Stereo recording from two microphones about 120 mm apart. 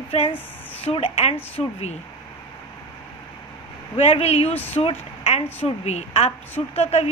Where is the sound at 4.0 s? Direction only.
55° left (ahead or behind).